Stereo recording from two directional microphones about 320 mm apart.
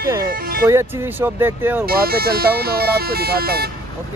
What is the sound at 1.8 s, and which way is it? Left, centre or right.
Speech, right.